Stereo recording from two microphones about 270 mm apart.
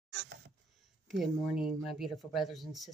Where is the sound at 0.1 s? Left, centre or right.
Right.